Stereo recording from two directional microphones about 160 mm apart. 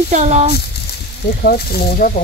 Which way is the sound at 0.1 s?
45° right (ahead or behind).